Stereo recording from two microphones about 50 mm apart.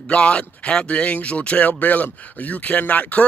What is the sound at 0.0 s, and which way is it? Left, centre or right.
Speech, left.